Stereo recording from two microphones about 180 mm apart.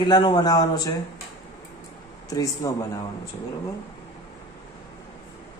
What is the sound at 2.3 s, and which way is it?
Speech, 20° left (ahead or behind).